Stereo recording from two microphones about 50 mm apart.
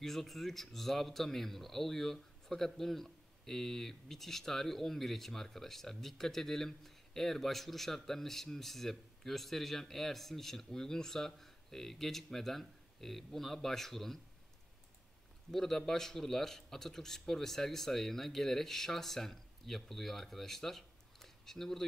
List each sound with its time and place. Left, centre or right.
0.0 s a man's voice: centre
15.5 s a man's voice: centre